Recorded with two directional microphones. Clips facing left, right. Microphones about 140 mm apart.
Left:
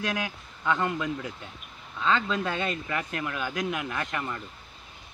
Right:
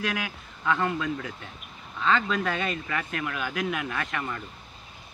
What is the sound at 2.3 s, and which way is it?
Speech, 25° left (ahead or behind).